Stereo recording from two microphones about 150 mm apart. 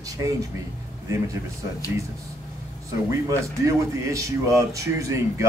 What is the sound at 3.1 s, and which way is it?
Speech, 20° right (ahead or behind).